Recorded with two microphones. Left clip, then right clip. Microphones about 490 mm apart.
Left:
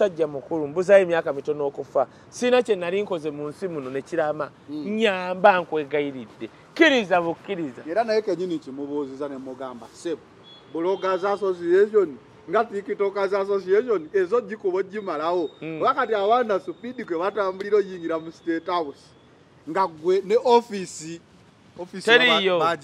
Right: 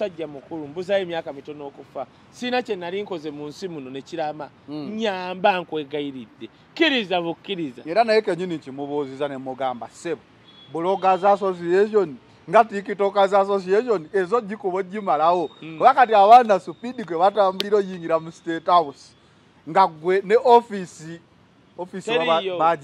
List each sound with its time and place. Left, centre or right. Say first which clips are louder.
0.0 s speech: left 6 dB; left
3.6 s speech: left 6 dB; centre
4.6 s a man's voice: left 1 dB; right
4.9 s speech: left 3 dB; left
5.4 s speech: left 3 dB; centre
6.1 s speech: left 2 dB; centre
7.1 s speech: left 2 dB; centre
8.5 s a man's voice: right 2 dB; right
22.0 s a man's voice: left 4 dB; left